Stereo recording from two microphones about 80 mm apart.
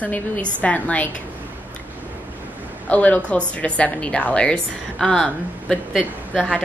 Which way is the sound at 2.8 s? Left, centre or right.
Centre.